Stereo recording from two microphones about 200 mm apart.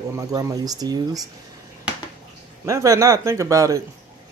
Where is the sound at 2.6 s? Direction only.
15° right (ahead or behind).